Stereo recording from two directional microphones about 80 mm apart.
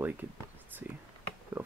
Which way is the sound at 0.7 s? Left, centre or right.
Right.